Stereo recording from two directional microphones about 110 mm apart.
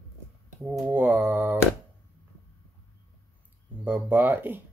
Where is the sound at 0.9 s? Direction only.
15° right (ahead or behind).